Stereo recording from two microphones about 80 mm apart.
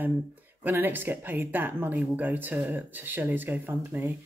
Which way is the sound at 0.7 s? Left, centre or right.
Right.